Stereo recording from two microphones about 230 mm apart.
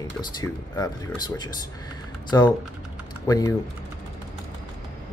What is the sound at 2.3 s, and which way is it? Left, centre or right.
Speech, centre.